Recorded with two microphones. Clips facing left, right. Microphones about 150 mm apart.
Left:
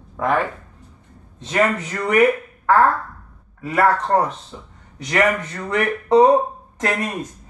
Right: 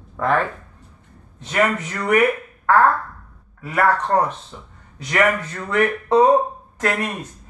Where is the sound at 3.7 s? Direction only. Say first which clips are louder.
Left 1 dB; 30° left (ahead or behind).